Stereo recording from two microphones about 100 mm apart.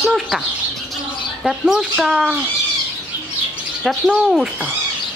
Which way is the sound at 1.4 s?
5° right (ahead or behind).